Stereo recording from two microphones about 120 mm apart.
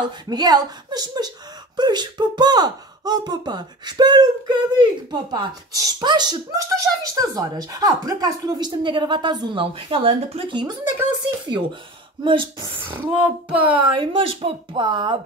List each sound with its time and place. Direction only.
0.0 s speech: 35° right (ahead or behind)
12.2 s speech: 40° right (ahead or behind)
12.8 s speech: 15° right (ahead or behind)
13.9 s speech: 50° right (ahead or behind)